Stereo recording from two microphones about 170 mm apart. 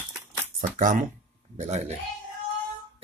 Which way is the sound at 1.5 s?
40° right (ahead or behind).